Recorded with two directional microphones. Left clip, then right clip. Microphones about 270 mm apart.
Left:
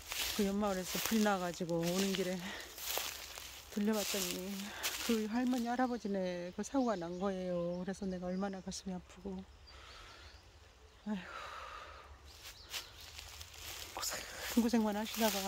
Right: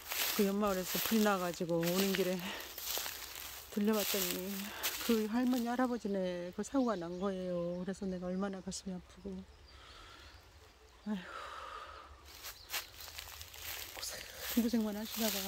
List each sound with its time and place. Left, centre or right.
0.1 s speech: centre
3.7 s speech: centre
9.2 s speech: centre
11.1 s gasp: centre
12.4 s walk: centre
14.0 s a sound: centre
14.5 s speech: centre